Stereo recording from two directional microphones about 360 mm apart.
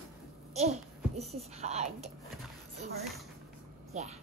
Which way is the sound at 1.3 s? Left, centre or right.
Centre.